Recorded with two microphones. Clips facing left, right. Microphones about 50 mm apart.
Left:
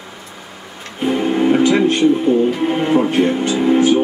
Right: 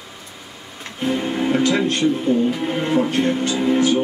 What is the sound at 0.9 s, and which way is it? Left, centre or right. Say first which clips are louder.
Speech: left 5 dB; centre.